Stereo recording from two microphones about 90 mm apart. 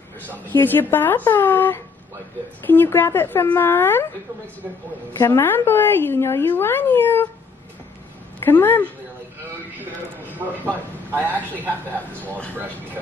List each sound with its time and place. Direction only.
0.3 s speech: 20° left (ahead or behind)
5.2 s speech: 25° left (ahead or behind)
8.5 s speech: 25° left (ahead or behind)
9.8 s a man's voice: 20° right (ahead or behind)